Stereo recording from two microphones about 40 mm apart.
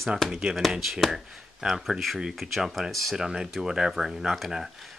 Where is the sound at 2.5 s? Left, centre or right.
Centre.